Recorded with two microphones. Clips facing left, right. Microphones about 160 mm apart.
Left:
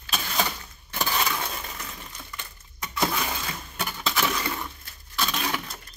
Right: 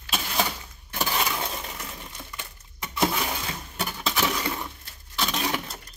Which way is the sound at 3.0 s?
15° right (ahead or behind).